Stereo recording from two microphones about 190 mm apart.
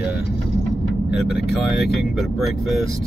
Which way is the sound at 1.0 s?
60° left (ahead or behind).